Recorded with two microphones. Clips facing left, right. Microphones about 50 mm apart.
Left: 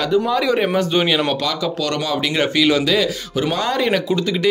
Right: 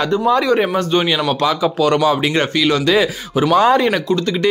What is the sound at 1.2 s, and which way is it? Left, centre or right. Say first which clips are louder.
Speech: right 4 dB; centre.